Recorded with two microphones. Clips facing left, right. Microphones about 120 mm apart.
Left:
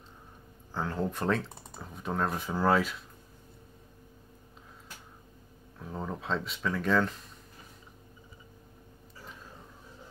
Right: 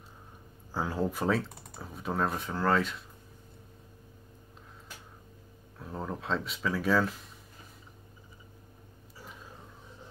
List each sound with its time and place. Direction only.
0.7 s speech: 10° right (ahead or behind)
2.5 s speech: 10° left (ahead or behind)
5.8 s speech: centre (ahead or behind)